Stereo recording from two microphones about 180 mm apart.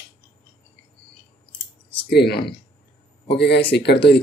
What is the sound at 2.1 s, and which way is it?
Speech, 65° left (ahead or behind).